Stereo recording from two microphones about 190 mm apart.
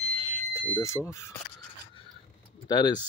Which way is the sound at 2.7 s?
20° left (ahead or behind).